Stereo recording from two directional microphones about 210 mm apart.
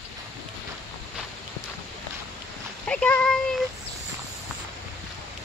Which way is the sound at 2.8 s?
5° left (ahead or behind).